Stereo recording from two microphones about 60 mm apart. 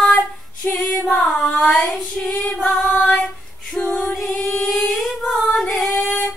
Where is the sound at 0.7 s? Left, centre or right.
Left.